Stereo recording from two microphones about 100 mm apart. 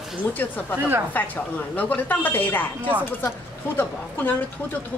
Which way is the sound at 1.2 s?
15° left (ahead or behind).